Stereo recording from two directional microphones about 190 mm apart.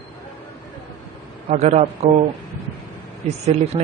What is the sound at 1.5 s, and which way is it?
Speech, 35° right (ahead or behind).